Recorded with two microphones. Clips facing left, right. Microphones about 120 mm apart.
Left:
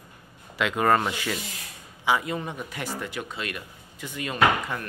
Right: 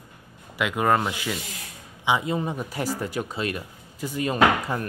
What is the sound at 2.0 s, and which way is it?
Speech, 20° right (ahead or behind).